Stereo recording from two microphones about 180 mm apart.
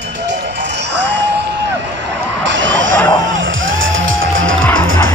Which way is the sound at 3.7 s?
90° right.